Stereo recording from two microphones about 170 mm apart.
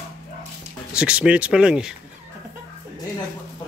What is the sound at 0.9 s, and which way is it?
Speech, 5° right (ahead or behind).